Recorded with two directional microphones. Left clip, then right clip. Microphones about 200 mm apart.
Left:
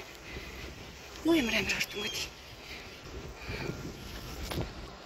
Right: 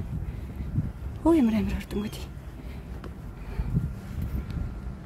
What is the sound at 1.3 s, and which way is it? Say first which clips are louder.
Speech: right 4 dB; 15° right (ahead or behind).